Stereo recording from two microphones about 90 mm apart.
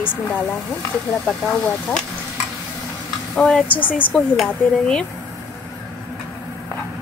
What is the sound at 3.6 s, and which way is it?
Speech, 20° left (ahead or behind).